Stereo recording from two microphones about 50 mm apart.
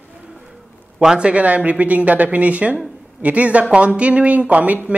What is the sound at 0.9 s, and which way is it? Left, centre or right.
Speech, centre.